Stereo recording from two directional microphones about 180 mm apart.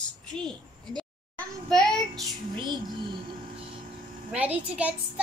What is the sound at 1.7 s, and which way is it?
Child singing, centre (ahead or behind).